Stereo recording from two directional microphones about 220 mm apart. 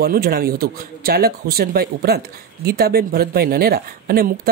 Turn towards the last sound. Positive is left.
turn(degrees=-40)  # may be behind; listen again after turning